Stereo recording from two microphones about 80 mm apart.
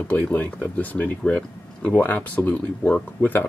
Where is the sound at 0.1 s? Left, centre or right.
Left.